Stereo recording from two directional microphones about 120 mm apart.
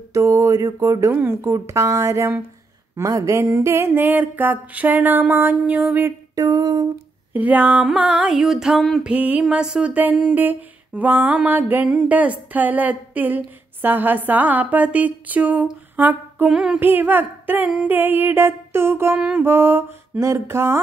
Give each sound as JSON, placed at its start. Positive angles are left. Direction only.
{"t": 0.1, "sound": "speech", "side_deg": -25}
{"t": 6.3, "sound": "speech", "side_deg": -30}
{"t": 7.3, "sound": "speech", "side_deg": -15}
{"t": 9.1, "sound": "speech", "side_deg": -10}
{"t": 19.1, "sound": "speech", "side_deg": -10}